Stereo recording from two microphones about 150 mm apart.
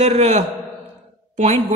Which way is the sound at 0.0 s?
45° right (ahead or behind).